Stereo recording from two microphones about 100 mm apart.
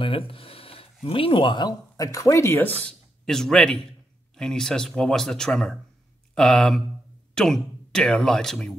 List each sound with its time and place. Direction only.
0.0 s a sound: 60° left (ahead or behind)
1.0 s speech: 65° left (ahead or behind); by 2.7 s 30° left (ahead or behind)
2.8 s speech: 5° left (ahead or behind)